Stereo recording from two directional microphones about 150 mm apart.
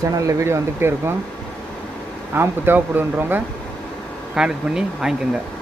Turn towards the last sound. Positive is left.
turn(degrees=-5)  # may be behind; listen again after turning